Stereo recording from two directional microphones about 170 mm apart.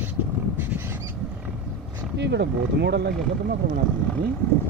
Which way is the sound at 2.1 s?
90° right.